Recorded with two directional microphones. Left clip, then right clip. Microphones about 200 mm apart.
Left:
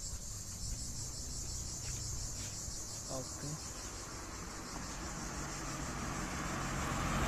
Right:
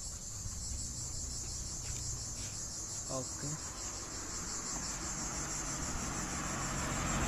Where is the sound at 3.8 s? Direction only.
60° right (ahead or behind).